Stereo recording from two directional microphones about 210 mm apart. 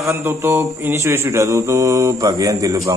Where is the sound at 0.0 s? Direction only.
15° right (ahead or behind).